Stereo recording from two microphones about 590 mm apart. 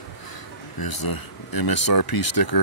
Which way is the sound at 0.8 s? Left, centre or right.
Left.